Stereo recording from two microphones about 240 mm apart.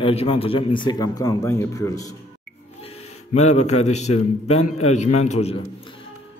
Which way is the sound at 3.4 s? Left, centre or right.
Left.